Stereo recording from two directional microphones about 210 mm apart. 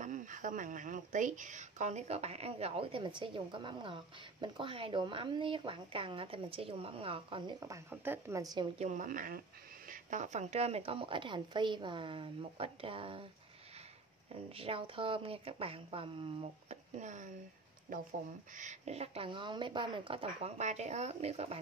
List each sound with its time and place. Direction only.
0.0 s speech: 35° right (ahead or behind); by 8.6 s 15° right (ahead or behind)
8.7 s a woman's voice: 35° right (ahead or behind)
14.3 s a woman's voice: 25° right (ahead or behind)